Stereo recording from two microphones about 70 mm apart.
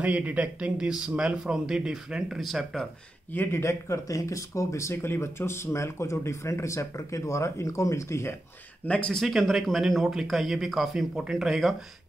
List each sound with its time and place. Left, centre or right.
0.0 s speech: right; by 2.9 s centre
3.3 s speech: left
8.8 s speech: centre
9.2 s speech: centre